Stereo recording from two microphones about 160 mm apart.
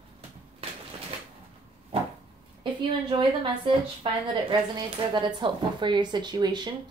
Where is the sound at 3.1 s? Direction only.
30° right (ahead or behind).